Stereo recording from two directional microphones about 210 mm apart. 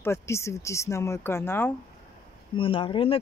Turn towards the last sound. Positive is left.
turn(degrees=25)  # may be behind; listen again after turning